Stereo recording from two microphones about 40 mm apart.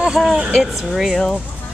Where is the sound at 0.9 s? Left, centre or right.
Centre.